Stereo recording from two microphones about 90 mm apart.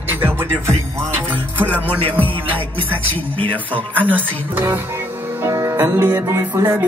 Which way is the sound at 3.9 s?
20° right (ahead or behind).